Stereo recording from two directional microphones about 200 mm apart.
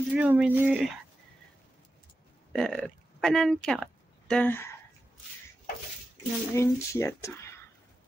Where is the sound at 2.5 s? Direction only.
5° left (ahead or behind).